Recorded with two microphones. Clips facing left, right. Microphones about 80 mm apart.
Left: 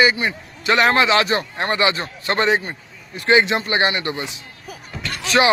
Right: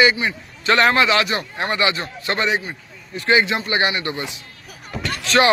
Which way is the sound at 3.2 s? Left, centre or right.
Left.